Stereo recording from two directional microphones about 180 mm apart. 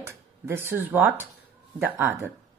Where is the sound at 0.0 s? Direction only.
15° right (ahead or behind).